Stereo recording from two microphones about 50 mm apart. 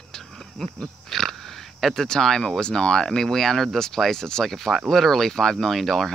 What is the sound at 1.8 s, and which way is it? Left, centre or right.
Speech, centre.